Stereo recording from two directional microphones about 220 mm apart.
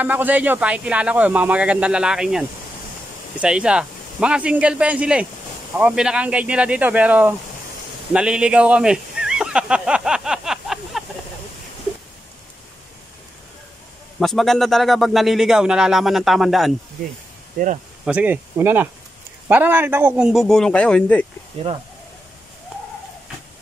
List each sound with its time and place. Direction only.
0.0 s speech: 5° right (ahead or behind)
8.1 s a sound: 5° right (ahead or behind)
14.2 s speech: centre (ahead or behind)
17.6 s speech: 35° right (ahead or behind)
18.0 s speech: 5° right (ahead or behind)
21.6 s speech: 25° right (ahead or behind)